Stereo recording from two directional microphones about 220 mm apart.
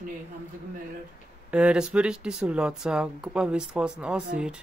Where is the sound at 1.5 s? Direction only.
5° right (ahead or behind).